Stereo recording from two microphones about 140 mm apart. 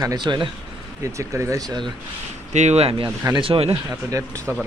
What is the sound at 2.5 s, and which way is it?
Speech, 55° right (ahead or behind).